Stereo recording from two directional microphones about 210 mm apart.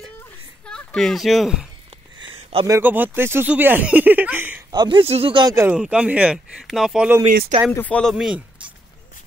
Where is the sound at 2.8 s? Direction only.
10° right (ahead or behind).